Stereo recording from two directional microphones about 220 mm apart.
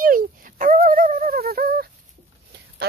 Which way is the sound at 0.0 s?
40° right (ahead or behind).